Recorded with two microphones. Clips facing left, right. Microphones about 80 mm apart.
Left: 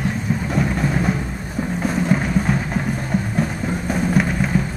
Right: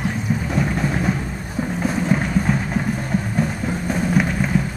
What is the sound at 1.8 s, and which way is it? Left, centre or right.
Boat, centre.